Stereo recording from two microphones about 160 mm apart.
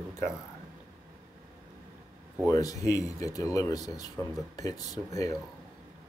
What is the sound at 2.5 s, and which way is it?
Speech, 20° left (ahead or behind).